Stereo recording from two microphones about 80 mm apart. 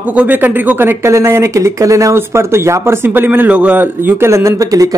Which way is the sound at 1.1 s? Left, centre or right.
Right.